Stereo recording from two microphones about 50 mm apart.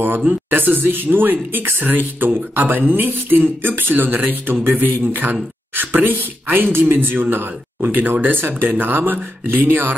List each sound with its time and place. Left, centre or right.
0.5 s speech: right